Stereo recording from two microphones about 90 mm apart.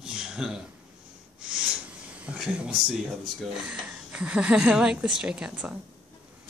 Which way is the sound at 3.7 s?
15° right (ahead or behind).